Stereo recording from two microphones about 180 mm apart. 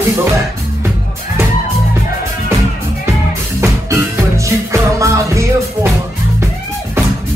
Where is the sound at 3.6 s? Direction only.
15° right (ahead or behind).